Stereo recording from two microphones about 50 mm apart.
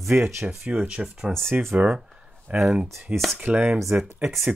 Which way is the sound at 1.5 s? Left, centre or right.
Right.